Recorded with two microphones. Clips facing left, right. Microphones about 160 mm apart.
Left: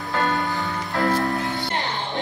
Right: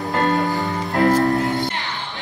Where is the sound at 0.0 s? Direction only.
40° right (ahead or behind).